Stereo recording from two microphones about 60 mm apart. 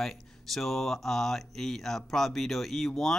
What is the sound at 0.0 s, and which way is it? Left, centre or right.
Speech, centre.